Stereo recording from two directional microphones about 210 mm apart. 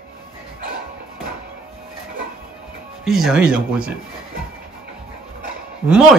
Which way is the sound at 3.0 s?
Centre (ahead or behind).